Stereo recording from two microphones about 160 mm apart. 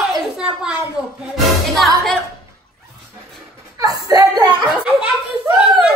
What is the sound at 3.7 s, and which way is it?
Speech, 20° right (ahead or behind).